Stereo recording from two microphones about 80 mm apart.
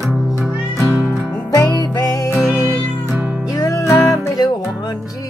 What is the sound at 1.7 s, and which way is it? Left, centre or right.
Music, left.